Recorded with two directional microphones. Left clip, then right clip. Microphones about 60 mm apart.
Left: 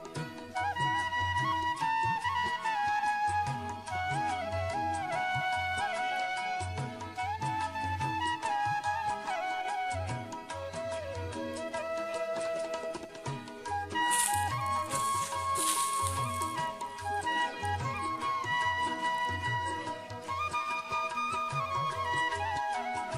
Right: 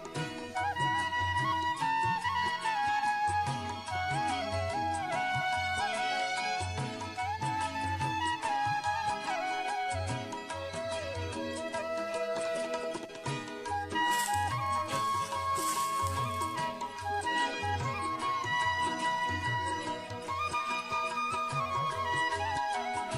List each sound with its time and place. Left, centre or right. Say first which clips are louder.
0.6 s music: even; centre
6.1 s music: right 1 dB; right
7.2 s music: even; centre
12.4 s music: even; right
13.9 s music: even; centre
16.2 s music: even; centre
16.6 s music: even; centre
20.6 s music: even; centre
21.0 s music: even; centre